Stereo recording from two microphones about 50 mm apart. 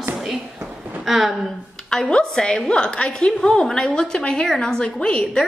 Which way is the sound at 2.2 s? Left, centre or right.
Centre.